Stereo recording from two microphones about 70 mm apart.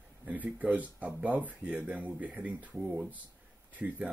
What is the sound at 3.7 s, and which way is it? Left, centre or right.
Speech, right.